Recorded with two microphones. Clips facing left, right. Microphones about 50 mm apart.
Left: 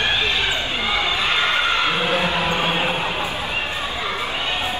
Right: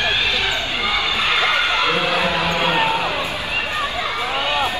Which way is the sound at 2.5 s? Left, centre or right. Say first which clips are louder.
Right 3 dB; right.